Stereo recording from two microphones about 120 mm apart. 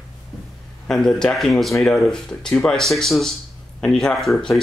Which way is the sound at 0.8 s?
5° left (ahead or behind).